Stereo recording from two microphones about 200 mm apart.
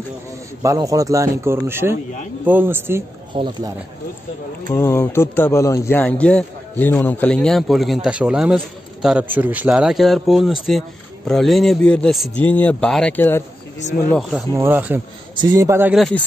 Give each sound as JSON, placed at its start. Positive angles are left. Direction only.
{"t": 0.6, "sound": "a man's voice", "side_deg": -15}
{"t": 3.3, "sound": "speech", "side_deg": -25}
{"t": 4.6, "sound": "speech", "side_deg": 10}
{"t": 14.5, "sound": "a man's voice", "side_deg": -10}